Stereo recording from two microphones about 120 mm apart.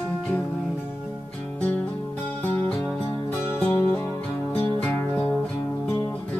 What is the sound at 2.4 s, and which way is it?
Music, 15° left (ahead or behind).